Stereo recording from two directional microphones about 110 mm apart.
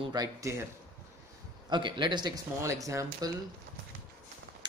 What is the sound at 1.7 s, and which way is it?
Speech, 45° right (ahead or behind).